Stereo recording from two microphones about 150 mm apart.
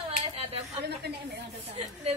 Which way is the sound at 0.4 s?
40° right (ahead or behind).